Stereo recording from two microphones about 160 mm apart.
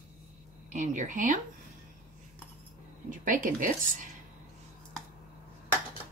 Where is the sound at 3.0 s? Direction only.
55° right (ahead or behind).